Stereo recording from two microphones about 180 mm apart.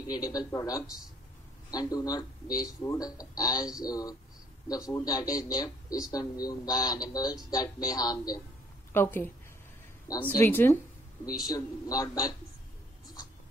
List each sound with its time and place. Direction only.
0.1 s speech: 20° left (ahead or behind)